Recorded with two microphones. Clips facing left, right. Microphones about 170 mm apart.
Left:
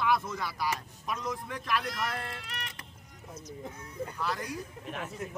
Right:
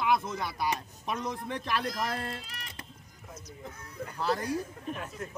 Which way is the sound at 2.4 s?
70° left (ahead or behind).